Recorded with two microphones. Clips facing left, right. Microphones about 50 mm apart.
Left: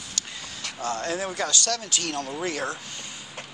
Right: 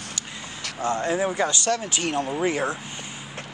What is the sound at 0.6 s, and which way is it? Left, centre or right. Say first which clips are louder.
Speech: right 4 dB; right.